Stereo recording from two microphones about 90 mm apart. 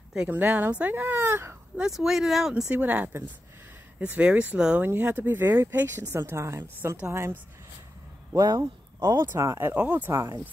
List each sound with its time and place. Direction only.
0.1 s speech: 15° right (ahead or behind)
1.8 s speech: 5° right (ahead or behind)
2.5 s speech: 15° right (ahead or behind)
8.4 s speech: 45° right (ahead or behind)
9.4 s speech: 30° right (ahead or behind)
9.8 s speech: 15° right (ahead or behind)